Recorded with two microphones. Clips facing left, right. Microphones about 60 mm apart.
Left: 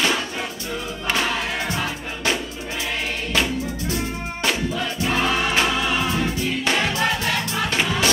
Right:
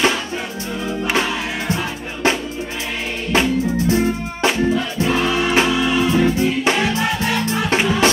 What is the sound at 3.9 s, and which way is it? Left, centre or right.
Music, right.